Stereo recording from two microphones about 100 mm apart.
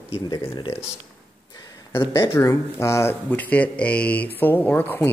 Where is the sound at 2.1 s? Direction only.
30° left (ahead or behind).